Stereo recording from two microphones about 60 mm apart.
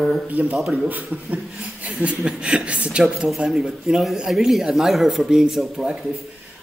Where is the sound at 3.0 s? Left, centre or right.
Centre.